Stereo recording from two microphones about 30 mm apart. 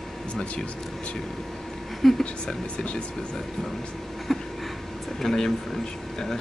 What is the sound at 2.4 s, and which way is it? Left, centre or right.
Speech, left.